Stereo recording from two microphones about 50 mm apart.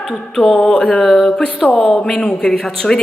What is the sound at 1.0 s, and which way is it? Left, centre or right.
A woman's voice, centre.